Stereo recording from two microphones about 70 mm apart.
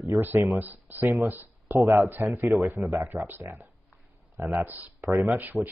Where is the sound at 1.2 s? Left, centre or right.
Right.